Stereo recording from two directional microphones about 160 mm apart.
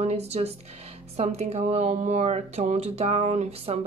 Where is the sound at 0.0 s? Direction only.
40° right (ahead or behind).